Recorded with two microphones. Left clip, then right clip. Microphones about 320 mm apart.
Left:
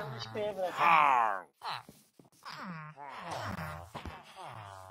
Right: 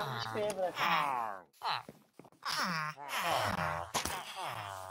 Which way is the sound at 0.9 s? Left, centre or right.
Left.